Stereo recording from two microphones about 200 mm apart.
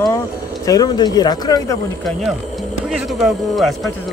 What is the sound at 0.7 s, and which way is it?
Speech, 20° left (ahead or behind).